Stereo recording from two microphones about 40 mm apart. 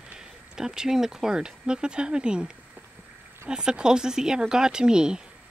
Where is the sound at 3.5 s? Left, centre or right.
Centre.